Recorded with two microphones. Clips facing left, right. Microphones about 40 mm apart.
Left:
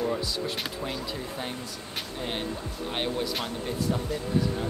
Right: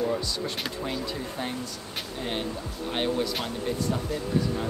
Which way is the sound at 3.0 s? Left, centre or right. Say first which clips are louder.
Right 3 dB; centre.